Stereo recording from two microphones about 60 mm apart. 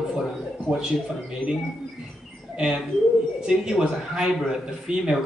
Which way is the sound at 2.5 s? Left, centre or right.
Centre.